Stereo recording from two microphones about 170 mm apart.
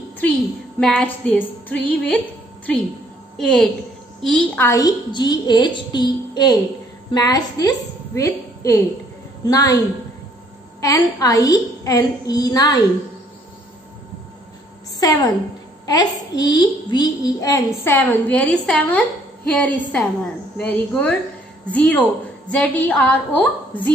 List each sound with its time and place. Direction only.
0.7 s a child's voice: 5° left (ahead or behind)
3.3 s a woman's voice: 5° left (ahead or behind)
4.6 s a woman's voice: 20° left (ahead or behind)
10.8 s a woman's voice: 20° left (ahead or behind)
15.0 s a woman's voice: 20° left (ahead or behind)